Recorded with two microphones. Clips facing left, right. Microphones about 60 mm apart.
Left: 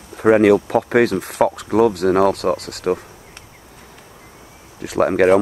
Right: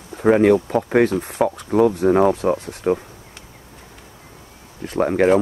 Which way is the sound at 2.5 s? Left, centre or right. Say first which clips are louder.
Even; left.